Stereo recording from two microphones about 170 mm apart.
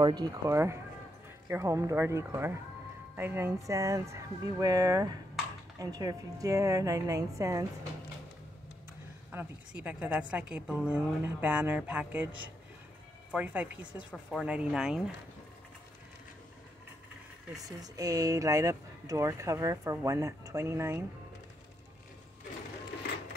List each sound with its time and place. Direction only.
0.0 s a woman's voice: 25° right (ahead or behind)
9.3 s a woman's voice: 10° right (ahead or behind)
17.6 s speech: 20° right (ahead or behind)